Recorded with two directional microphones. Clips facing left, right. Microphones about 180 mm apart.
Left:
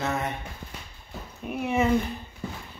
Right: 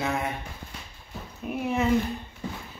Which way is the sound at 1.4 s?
Centre (ahead or behind).